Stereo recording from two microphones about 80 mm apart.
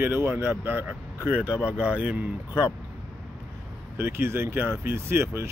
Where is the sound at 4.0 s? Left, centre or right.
Right.